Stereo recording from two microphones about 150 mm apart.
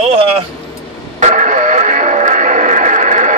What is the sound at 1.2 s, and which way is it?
Music, 55° right (ahead or behind).